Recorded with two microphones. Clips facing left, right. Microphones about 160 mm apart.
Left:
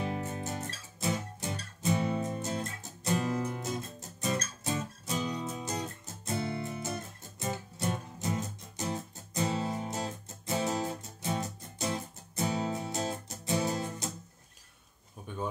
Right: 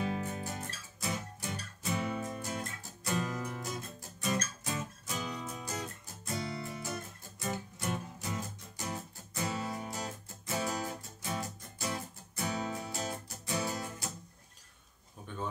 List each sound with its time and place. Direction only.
0.0 s music: 25° left (ahead or behind)